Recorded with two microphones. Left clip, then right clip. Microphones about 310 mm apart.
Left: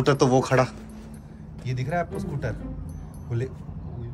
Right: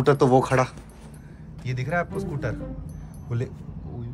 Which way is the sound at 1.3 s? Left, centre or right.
Centre.